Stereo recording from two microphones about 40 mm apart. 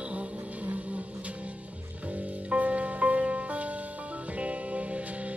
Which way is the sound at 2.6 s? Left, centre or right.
Right.